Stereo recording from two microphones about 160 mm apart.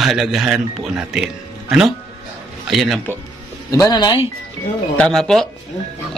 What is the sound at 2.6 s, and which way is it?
Speech, centre (ahead or behind).